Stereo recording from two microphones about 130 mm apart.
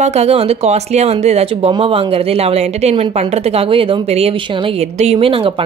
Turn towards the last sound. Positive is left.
turn(degrees=-45)  # may be behind; listen again after turning